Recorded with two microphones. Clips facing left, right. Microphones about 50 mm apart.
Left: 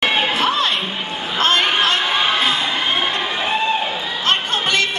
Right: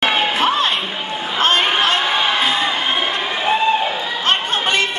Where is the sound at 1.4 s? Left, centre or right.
Right.